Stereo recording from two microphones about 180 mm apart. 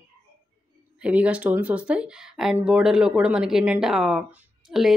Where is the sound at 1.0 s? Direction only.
5° right (ahead or behind).